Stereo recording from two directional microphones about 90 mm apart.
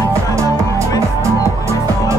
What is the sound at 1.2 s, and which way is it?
Music, 35° right (ahead or behind).